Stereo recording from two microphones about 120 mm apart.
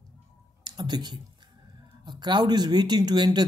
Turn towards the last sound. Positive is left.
turn(degrees=-35)  # may be behind; listen again after turning